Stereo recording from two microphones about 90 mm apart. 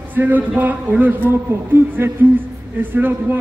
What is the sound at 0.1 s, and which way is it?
A man's voice, 20° right (ahead or behind).